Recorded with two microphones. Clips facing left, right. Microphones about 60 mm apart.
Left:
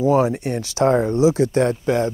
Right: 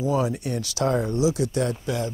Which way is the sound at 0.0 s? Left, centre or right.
Left.